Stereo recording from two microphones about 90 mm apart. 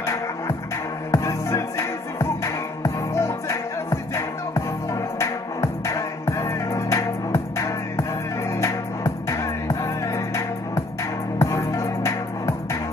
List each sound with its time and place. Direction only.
0.0 s music: 35° left (ahead or behind)